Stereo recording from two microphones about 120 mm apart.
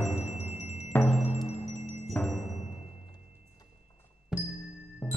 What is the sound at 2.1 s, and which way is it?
Music, 10° left (ahead or behind).